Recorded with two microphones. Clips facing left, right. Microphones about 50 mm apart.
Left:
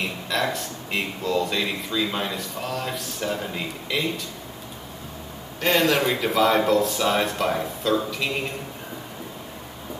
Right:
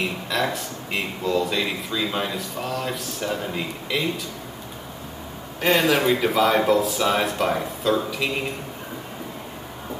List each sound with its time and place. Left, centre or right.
0.3 s speech: centre
5.6 s speech: centre